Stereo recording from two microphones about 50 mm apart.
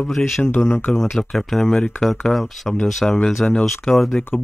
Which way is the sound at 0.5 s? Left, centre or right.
Left.